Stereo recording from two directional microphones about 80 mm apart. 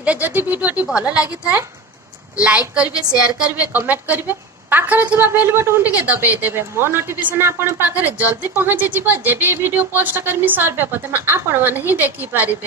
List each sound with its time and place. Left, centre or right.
0.0 s a woman's voice: right